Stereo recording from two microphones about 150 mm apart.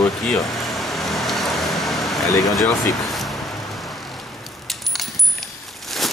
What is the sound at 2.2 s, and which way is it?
Speech, 20° left (ahead or behind).